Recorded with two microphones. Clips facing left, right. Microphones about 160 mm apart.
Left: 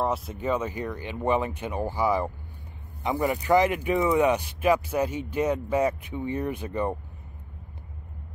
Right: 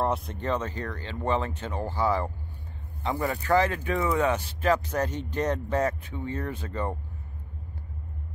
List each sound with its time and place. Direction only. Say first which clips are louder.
0.0 s speech: left 1 dB; centre (ahead or behind)